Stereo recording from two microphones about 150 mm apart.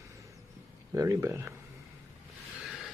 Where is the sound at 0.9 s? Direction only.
20° right (ahead or behind).